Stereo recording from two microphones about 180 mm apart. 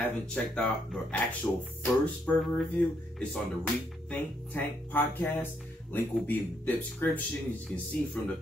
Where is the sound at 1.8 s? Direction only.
10° left (ahead or behind).